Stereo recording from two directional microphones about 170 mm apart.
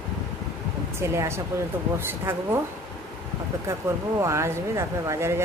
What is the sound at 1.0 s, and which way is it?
Speech, 15° right (ahead or behind).